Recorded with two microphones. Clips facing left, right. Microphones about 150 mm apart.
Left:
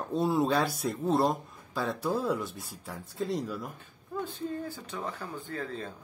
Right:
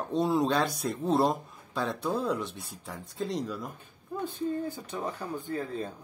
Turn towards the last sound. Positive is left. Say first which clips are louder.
# right 4 dB
turn(degrees=-25)  # may be behind; listen again after turning